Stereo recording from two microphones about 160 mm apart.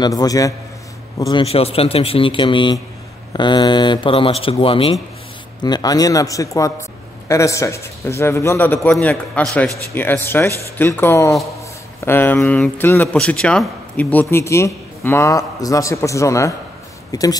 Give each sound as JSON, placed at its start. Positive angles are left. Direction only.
{"t": 0.0, "sound": "speech", "side_deg": 25}
{"t": 1.3, "sound": "speech", "side_deg": 40}